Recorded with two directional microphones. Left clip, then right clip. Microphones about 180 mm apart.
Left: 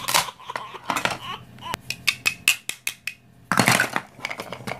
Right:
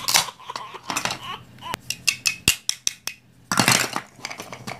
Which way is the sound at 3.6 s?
Centre (ahead or behind).